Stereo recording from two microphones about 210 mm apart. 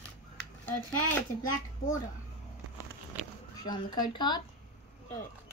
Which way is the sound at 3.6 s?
20° left (ahead or behind).